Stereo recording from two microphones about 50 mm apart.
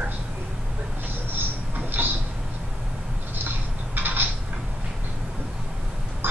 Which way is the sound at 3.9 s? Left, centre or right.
Right.